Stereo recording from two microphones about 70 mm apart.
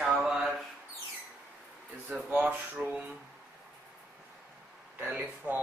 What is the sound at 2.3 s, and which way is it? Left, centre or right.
Speech, right.